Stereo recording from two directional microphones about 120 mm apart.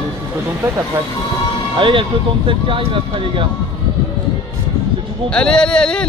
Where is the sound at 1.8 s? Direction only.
45° right (ahead or behind).